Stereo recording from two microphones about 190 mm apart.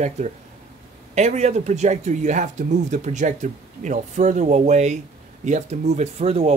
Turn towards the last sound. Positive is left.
turn(degrees=-35)  # may be behind; listen again after turning